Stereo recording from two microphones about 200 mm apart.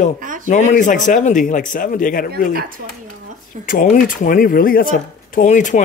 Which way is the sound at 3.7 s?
40° left (ahead or behind).